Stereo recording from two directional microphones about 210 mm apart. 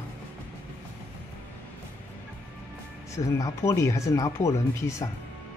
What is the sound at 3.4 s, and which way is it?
Speech, 15° left (ahead or behind).